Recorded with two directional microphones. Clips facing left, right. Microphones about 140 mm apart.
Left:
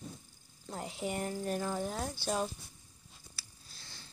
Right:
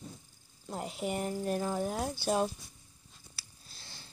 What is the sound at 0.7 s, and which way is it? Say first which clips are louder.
Speech: right 2 dB; 5° right (ahead or behind).